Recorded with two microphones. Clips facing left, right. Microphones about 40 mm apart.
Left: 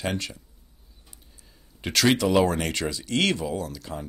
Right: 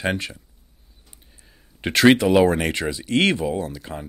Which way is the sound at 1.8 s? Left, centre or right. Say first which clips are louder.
Right 6 dB; right.